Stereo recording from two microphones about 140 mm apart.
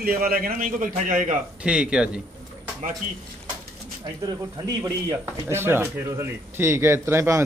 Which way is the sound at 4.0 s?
30° right (ahead or behind).